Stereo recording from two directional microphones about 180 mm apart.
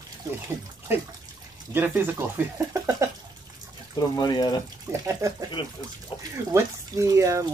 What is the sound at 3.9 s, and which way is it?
Speech, 20° left (ahead or behind).